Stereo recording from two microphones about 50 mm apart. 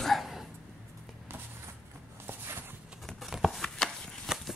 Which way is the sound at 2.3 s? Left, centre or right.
Right.